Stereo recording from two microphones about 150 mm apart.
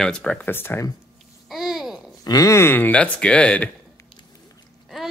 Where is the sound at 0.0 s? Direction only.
5° left (ahead or behind).